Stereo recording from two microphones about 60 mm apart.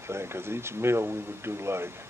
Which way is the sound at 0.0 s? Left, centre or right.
Right.